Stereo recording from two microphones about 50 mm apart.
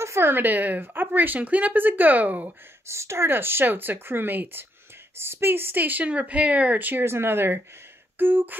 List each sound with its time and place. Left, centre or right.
0.2 s speech: right
2.9 s speech: right
7.1 s speech: right